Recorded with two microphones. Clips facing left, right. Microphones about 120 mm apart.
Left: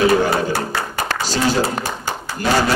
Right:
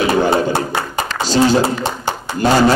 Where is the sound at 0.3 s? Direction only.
25° right (ahead or behind).